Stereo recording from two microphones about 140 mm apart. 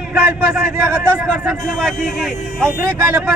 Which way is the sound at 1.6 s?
5° left (ahead or behind).